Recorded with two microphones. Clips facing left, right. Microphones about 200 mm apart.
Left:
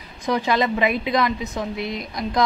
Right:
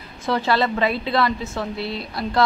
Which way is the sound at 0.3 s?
15° left (ahead or behind).